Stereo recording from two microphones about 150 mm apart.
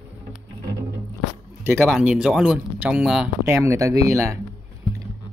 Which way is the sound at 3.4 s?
20° right (ahead or behind).